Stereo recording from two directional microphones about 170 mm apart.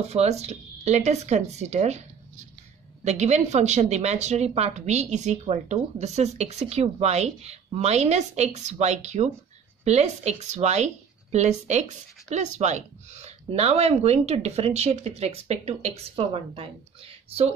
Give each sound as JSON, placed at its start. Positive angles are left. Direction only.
{"t": 0.1, "sound": "a woman's voice", "side_deg": -40}